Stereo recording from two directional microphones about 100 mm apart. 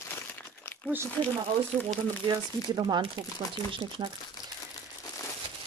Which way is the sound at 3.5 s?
60° right (ahead or behind).